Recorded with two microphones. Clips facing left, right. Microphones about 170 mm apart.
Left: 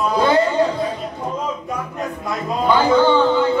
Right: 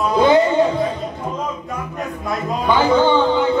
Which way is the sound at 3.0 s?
20° right (ahead or behind).